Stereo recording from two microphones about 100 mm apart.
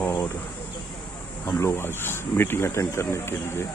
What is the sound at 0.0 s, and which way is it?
Insect, 30° left (ahead or behind).